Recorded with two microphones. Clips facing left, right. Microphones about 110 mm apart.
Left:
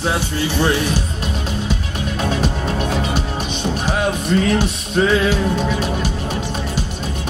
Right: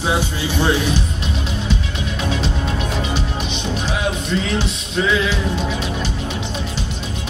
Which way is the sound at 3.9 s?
50° left (ahead or behind).